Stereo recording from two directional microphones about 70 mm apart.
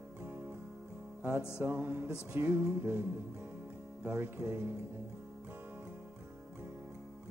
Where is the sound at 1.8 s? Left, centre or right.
Right.